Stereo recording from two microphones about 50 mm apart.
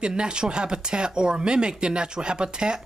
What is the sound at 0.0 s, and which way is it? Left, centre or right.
Speech, centre.